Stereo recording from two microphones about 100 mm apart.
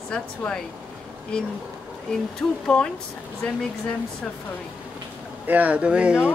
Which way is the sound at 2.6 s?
10° left (ahead or behind).